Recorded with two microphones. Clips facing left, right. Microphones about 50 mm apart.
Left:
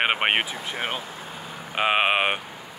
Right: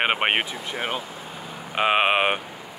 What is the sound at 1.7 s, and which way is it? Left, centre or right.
Speech, centre.